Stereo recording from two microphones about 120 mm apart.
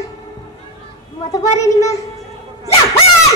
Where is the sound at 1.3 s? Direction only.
25° left (ahead or behind).